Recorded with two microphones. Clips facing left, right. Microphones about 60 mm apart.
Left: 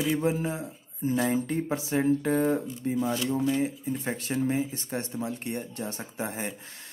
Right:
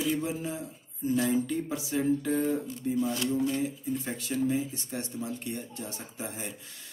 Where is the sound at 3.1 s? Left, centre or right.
Left.